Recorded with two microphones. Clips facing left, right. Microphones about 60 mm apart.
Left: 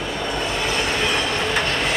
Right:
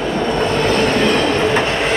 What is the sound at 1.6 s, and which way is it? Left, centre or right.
Train, centre.